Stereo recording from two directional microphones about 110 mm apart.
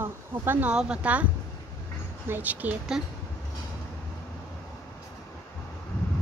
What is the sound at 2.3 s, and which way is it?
Speech, 15° right (ahead or behind).